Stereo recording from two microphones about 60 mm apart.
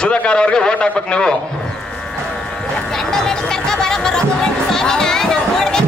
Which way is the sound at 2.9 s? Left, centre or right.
Centre.